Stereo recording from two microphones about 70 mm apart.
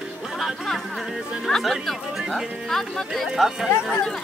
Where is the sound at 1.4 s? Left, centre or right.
Centre.